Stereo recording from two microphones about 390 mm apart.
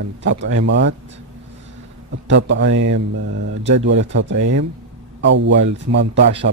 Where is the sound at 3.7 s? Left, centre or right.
Right.